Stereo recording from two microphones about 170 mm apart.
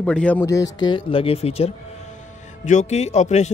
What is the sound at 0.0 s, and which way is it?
Speech, 5° left (ahead or behind).